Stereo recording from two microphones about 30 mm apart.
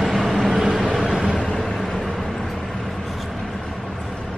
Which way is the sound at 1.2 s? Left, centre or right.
Left.